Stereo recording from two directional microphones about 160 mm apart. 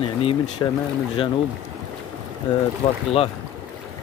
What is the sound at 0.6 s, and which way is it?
Speech, 20° left (ahead or behind).